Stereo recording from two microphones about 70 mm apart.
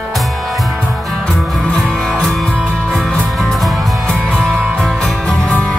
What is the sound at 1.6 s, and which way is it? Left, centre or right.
Music, centre.